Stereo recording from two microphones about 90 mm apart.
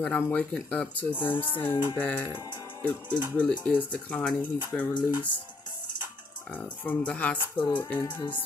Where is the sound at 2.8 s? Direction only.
15° left (ahead or behind).